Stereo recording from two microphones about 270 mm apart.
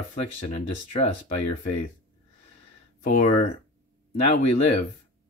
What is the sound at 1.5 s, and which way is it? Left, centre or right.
Speech, left.